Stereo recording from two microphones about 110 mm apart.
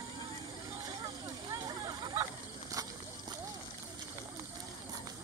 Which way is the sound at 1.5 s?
40° right (ahead or behind).